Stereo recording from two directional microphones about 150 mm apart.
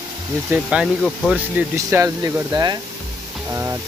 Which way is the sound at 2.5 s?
25° right (ahead or behind).